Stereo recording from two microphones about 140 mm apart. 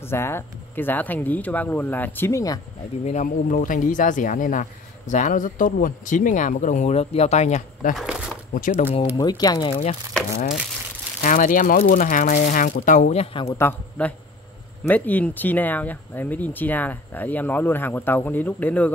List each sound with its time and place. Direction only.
0.0 s speech: 15° left (ahead or behind)
3.1 s speech: 65° left (ahead or behind)
7.9 s a sound: 5° right (ahead or behind)
9.1 s speech: 30° left (ahead or behind)
11.2 s speech: 70° left (ahead or behind)
13.2 s speech: 40° left (ahead or behind)
13.5 s speech: 15° left (ahead or behind)